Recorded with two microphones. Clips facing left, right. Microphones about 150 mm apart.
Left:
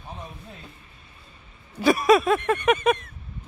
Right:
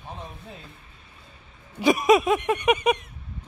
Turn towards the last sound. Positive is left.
turn(degrees=-15)  # may be behind; listen again after turning